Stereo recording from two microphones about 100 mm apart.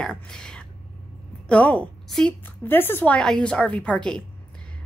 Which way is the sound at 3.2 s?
10° left (ahead or behind).